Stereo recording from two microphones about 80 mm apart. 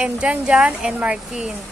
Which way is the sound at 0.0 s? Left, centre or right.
Centre.